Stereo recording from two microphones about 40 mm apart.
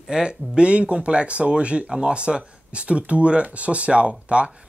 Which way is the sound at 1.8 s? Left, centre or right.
Centre.